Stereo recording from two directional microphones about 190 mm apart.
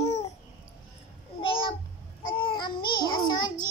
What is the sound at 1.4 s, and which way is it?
Babbling, 30° left (ahead or behind).